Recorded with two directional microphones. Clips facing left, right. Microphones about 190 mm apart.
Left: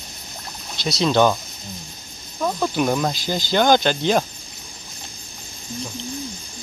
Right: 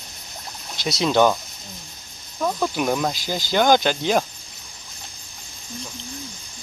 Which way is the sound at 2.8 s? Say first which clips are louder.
Left 2 dB; 5° right (ahead or behind).